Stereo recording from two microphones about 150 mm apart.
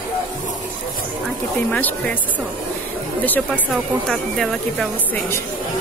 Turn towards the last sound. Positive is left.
turn(degrees=5)  # may be behind; listen again after turning